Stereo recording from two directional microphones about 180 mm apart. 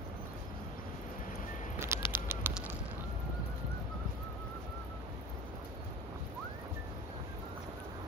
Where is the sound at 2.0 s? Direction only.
25° left (ahead or behind).